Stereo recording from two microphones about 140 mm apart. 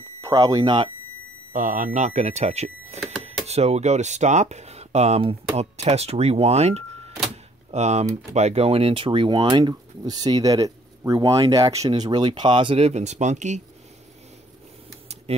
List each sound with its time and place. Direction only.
0.2 s speech: 25° right (ahead or behind)
1.5 s speech: 70° right (ahead or behind)